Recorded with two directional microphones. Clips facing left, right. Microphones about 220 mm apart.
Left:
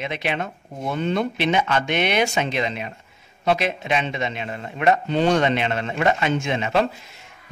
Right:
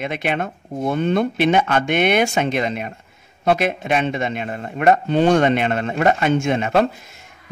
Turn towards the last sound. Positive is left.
turn(degrees=-50)  # may be behind; listen again after turning